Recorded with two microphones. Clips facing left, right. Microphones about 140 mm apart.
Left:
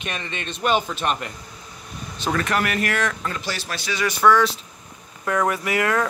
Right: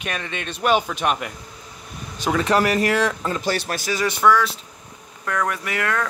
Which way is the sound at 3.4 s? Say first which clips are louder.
Right 6 dB; 50° right (ahead or behind).